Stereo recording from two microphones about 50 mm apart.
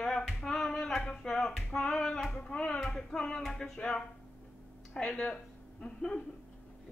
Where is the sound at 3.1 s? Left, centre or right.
Centre.